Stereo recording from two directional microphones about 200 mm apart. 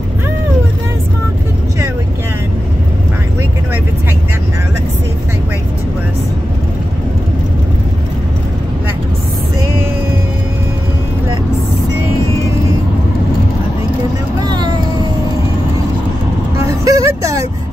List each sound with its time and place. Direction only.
14.4 s vehicle: 20° right (ahead or behind)
16.5 s vehicle: 15° right (ahead or behind)